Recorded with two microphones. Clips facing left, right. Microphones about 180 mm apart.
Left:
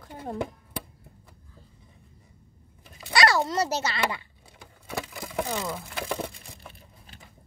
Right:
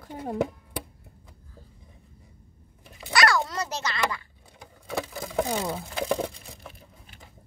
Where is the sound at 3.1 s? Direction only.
30° left (ahead or behind).